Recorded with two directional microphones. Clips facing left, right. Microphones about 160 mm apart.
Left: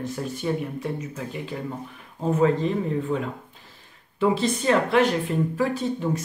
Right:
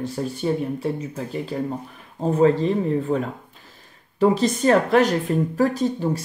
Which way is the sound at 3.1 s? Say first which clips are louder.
Right 3 dB; 40° right (ahead or behind).